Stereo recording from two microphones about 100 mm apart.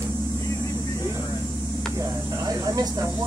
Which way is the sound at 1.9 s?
35° right (ahead or behind).